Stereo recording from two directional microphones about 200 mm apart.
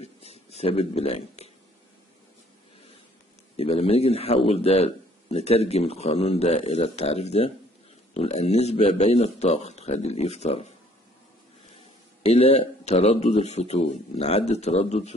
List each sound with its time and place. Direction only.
0.0 s a sound: 30° left (ahead or behind)
3.5 s a man's voice: 30° left (ahead or behind)
12.2 s a man's voice: 30° left (ahead or behind)